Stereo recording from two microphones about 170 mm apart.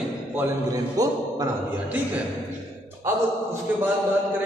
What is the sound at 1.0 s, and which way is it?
Speech, 20° right (ahead or behind).